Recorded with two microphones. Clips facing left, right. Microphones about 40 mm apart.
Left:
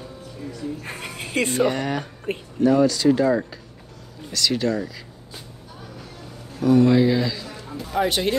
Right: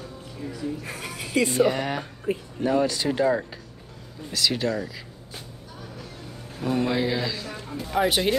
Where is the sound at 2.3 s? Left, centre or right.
Left.